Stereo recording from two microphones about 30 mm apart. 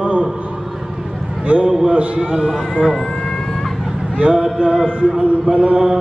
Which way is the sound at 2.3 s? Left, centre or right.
Right.